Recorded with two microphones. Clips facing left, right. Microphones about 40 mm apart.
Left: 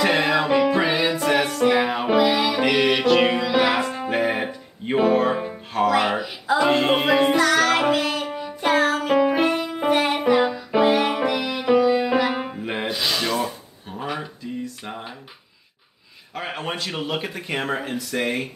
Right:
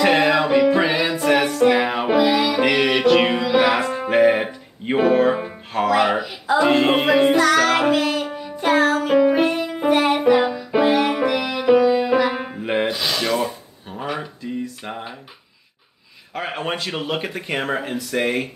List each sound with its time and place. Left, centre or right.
0.0 s music: centre
12.6 s rub: centre
12.9 s rub: centre
16.3 s speech: centre